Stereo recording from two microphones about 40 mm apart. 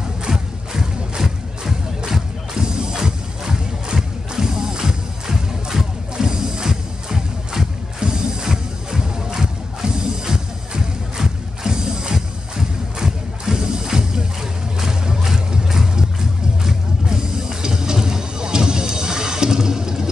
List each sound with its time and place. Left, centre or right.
0.2 s music: centre